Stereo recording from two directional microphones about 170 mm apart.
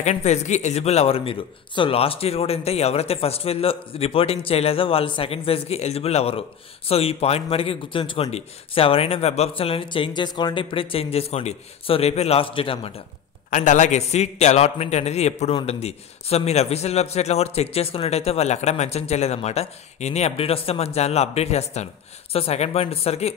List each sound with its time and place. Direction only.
0.0 s speech: 40° left (ahead or behind)
13.5 s speech: 45° left (ahead or behind)